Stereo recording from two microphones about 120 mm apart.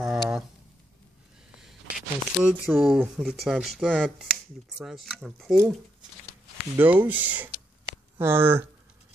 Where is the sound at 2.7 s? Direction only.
Centre (ahead or behind).